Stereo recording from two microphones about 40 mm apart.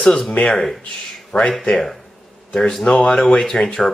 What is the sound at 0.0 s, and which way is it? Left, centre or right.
Speech, centre.